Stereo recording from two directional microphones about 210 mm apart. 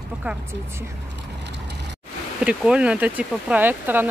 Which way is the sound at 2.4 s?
5° right (ahead or behind).